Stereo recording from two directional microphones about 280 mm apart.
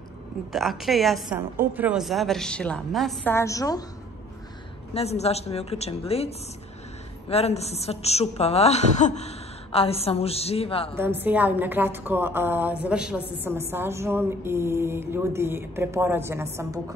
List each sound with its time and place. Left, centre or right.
0.5 s a woman's voice: centre
4.9 s a woman's voice: left
11.0 s a woman's voice: centre